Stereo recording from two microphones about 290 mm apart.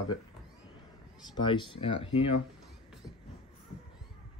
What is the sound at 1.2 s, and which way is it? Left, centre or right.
Speech, centre.